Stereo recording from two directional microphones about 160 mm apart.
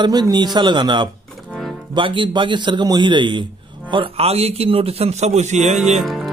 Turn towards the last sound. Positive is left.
turn(degrees=0)  # may be behind; listen again after turning